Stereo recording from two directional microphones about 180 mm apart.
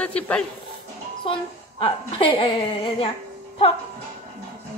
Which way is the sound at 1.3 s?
30° left (ahead or behind).